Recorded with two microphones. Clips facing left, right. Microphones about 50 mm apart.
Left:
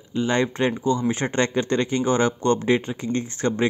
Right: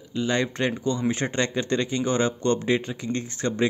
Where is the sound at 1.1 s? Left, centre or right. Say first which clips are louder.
Left 3 dB; left.